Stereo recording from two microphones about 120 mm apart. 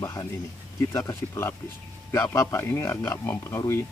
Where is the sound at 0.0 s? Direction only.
25° left (ahead or behind).